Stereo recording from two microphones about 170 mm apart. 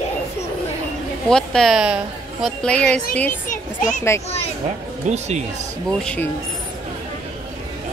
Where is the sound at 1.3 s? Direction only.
5° left (ahead or behind).